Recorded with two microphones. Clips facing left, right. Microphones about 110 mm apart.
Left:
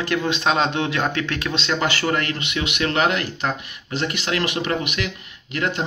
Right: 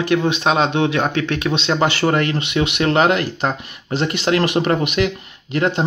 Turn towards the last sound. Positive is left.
turn(degrees=-35)  # may be behind; listen again after turning